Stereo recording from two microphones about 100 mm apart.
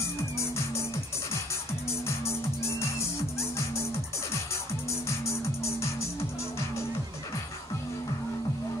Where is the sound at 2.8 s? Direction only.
30° left (ahead or behind).